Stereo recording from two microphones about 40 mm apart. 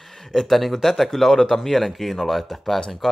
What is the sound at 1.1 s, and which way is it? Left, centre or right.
Speech, centre.